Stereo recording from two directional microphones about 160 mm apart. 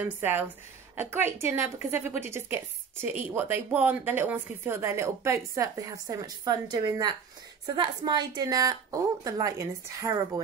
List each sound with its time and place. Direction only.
0.0 s a woman's voice: 15° right (ahead or behind)